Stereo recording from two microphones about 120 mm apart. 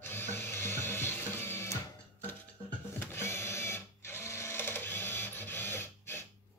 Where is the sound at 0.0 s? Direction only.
20° left (ahead or behind).